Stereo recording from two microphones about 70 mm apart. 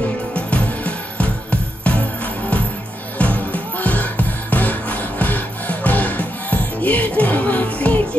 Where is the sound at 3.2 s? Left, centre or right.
Left.